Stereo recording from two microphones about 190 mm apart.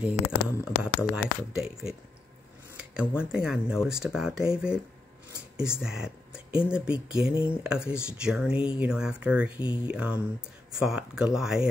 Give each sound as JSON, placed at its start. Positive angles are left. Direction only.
{"t": 0.0, "sound": "speech", "side_deg": -5}
{"t": 3.2, "sound": "speech", "side_deg": -5}
{"t": 9.6, "sound": "speech", "side_deg": 25}
{"t": 9.8, "sound": "speech", "side_deg": -5}